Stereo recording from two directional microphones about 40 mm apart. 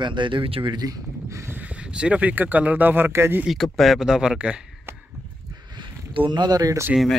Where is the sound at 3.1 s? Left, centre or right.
Right.